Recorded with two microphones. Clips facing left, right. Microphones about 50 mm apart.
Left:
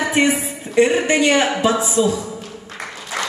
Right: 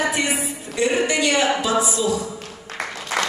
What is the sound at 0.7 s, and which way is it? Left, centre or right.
A woman's voice, left.